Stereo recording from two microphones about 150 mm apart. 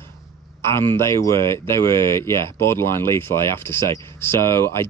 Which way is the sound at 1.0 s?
20° left (ahead or behind).